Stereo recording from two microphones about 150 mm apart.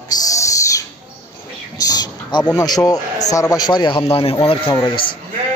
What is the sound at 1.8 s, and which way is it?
A man's voice, 25° left (ahead or behind).